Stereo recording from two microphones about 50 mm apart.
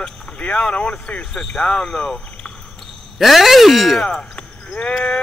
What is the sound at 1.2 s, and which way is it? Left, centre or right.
Speech, centre.